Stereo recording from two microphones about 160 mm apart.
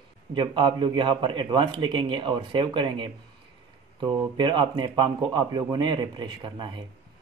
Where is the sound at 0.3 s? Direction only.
30° right (ahead or behind).